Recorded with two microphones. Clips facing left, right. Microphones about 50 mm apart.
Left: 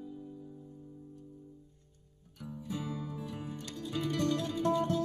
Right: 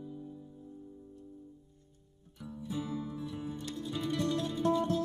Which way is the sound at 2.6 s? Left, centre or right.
Left.